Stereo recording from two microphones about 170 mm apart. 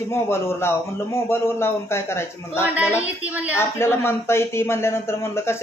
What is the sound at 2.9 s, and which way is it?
Speech, 10° right (ahead or behind).